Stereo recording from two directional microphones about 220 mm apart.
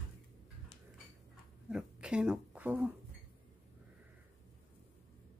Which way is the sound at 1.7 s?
5° right (ahead or behind).